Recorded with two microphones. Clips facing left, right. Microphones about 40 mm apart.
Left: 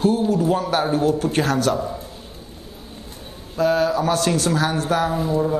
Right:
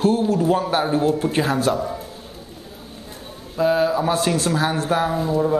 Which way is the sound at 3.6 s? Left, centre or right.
Centre.